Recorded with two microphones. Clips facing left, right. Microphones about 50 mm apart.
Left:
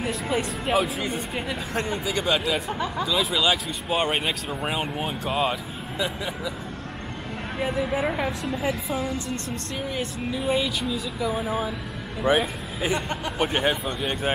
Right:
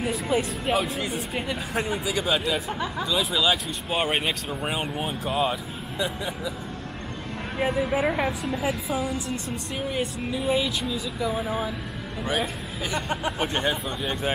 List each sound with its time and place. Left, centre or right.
0.0 s speech: centre
7.5 s a woman's voice: centre
12.2 s a man's voice: centre
13.4 s a man's voice: centre